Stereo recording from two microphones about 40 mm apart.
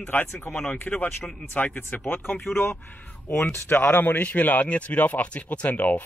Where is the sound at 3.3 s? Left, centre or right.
Left.